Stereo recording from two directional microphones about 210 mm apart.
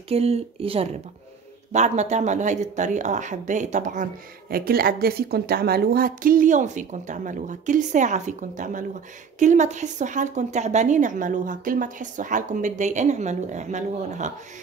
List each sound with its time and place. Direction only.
0.1 s speech: 30° right (ahead or behind)